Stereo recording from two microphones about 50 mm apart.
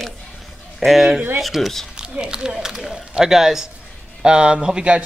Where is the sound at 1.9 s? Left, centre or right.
Centre.